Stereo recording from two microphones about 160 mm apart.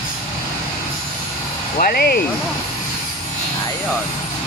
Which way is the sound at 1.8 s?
65° left (ahead or behind).